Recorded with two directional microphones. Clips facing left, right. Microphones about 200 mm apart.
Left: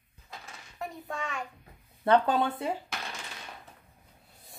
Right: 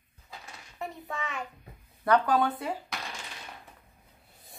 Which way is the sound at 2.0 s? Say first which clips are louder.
Even; 25° left (ahead or behind).